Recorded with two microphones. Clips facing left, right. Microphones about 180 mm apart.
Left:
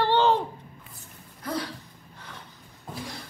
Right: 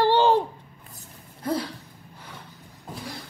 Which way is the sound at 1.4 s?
30° right (ahead or behind).